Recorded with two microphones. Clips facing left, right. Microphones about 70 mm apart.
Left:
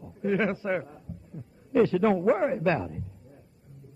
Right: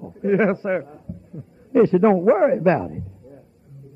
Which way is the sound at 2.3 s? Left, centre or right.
Centre.